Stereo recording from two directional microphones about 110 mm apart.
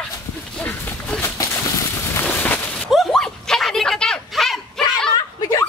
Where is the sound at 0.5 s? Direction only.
10° left (ahead or behind).